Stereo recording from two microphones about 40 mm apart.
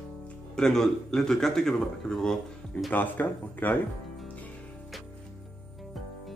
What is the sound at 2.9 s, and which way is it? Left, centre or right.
Speech, left.